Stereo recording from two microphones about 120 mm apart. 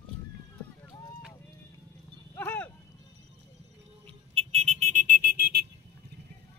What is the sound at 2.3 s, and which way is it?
Clip-clop, 15° left (ahead or behind).